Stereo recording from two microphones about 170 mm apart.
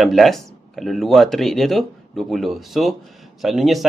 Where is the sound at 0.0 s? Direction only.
Centre (ahead or behind).